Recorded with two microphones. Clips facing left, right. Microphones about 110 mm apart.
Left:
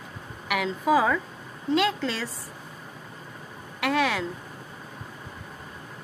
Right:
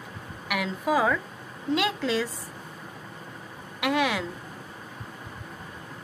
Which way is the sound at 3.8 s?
10° right (ahead or behind).